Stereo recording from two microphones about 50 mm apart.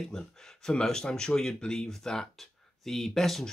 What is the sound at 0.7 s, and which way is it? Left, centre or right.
Speech, centre.